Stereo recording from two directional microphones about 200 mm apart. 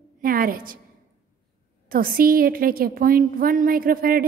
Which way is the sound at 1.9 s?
45° right (ahead or behind).